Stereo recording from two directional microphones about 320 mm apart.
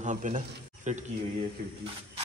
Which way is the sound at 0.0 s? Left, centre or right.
Right.